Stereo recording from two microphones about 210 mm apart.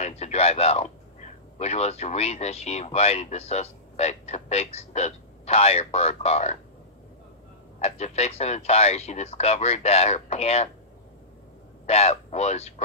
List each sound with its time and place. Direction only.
0.0 s a man's voice: 30° left (ahead or behind)
7.8 s speech: 30° left (ahead or behind)
11.8 s speech: 30° left (ahead or behind)